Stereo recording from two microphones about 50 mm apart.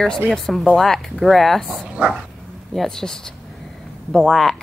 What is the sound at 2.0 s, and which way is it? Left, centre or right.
Bow-wow, right.